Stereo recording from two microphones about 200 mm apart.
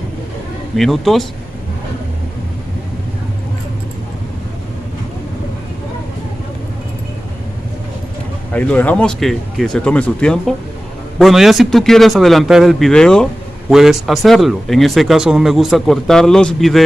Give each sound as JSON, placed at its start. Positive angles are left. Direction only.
{"t": 0.7, "sound": "a man's voice", "side_deg": 0}
{"t": 8.5, "sound": "a man's voice", "side_deg": 10}